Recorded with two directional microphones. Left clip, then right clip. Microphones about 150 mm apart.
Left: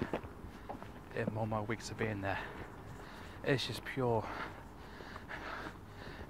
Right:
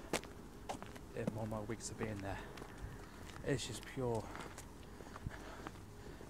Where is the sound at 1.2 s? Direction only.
15° left (ahead or behind).